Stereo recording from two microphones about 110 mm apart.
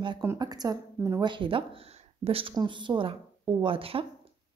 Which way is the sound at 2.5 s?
45° right (ahead or behind).